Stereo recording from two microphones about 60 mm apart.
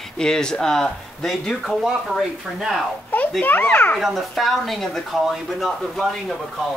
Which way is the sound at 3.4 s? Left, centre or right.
Left.